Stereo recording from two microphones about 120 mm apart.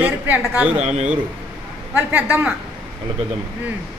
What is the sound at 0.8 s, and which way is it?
Speech, 70° right (ahead or behind).